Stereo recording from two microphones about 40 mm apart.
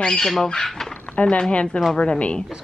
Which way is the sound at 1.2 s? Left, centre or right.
Left.